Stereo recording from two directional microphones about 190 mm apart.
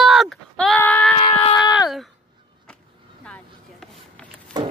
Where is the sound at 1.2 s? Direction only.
25° left (ahead or behind).